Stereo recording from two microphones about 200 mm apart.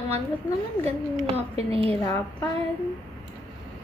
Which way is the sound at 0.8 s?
30° right (ahead or behind).